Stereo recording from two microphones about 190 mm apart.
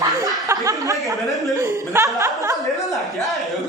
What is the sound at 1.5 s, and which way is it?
Chuckle, 15° right (ahead or behind).